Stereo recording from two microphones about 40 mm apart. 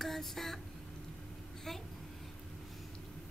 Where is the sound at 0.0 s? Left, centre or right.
Centre.